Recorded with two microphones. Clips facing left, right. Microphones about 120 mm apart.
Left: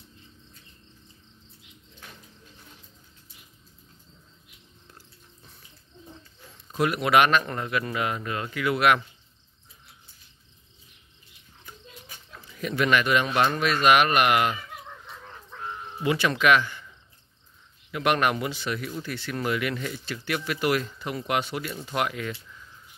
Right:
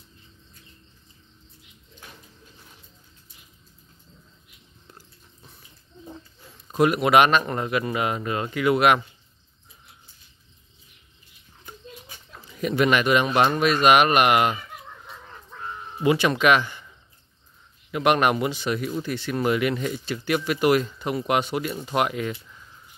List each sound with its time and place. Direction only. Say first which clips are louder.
6.7 s speech: right 4 dB; 20° right (ahead or behind)
12.4 s speech: right 4 dB; 20° right (ahead or behind)
16.0 s speech: right 4 dB; 20° right (ahead or behind)
17.9 s speech: right 4 dB; 20° right (ahead or behind)